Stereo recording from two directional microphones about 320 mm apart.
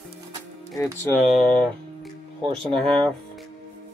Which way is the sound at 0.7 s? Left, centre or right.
Centre.